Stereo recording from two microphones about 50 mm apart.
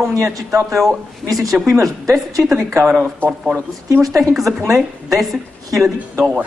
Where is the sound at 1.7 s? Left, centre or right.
Right.